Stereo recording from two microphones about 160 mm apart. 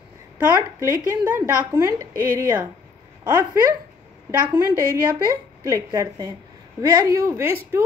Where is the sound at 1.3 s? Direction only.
15° right (ahead or behind).